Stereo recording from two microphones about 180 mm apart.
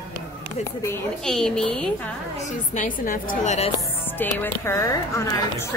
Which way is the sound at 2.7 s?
50° left (ahead or behind).